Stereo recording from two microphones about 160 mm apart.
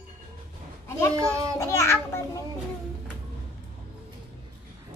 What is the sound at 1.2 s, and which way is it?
Speech, 20° right (ahead or behind).